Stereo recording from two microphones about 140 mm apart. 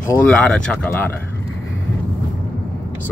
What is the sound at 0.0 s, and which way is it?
Speech, 10° left (ahead or behind).